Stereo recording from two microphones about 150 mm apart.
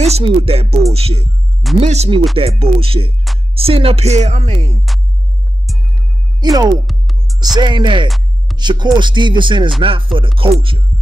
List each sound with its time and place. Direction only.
0.0 s music: 45° right (ahead or behind)
3.5 s speech: 40° right (ahead or behind)
5.9 s music: 25° right (ahead or behind)